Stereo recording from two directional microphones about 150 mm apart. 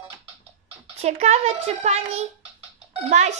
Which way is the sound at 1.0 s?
45° right (ahead or behind).